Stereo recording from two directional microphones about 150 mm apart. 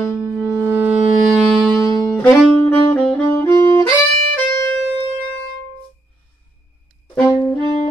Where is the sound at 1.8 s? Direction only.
25° left (ahead or behind).